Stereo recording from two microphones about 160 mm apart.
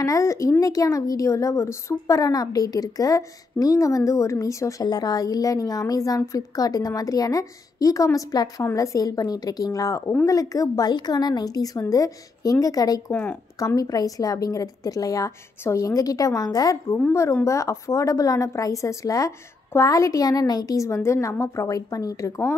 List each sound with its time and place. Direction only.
0.0 s a woman's voice: 20° left (ahead or behind)
13.1 s speech: 10° left (ahead or behind)
13.6 s a woman's voice: 20° left (ahead or behind)